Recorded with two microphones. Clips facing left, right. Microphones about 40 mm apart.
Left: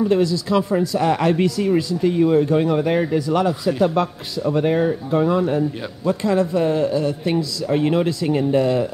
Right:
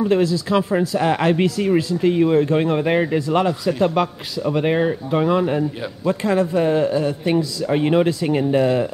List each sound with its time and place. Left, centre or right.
0.0 s speech: centre
6.2 s speech: right